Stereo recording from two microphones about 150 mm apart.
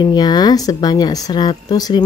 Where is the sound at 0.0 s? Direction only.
30° left (ahead or behind).